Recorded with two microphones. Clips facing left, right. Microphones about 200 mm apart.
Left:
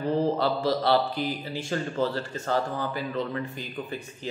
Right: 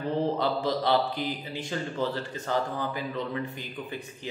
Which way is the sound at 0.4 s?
20° right (ahead or behind).